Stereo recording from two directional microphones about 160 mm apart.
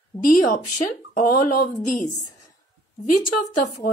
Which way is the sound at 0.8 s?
55° left (ahead or behind).